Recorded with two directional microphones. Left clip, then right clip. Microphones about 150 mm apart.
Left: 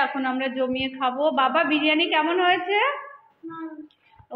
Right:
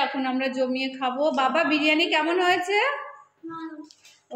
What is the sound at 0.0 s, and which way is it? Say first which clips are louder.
A woman's voice: left 1 dB; 15° right (ahead or behind).